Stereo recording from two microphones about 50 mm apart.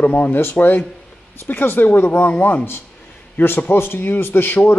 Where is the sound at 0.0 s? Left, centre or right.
Left.